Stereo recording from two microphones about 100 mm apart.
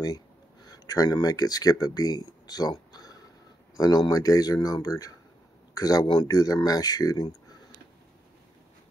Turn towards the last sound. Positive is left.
turn(degrees=40)  # may be behind; listen again after turning